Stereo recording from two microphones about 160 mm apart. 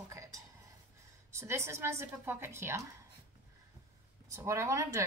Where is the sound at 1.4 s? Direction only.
15° right (ahead or behind).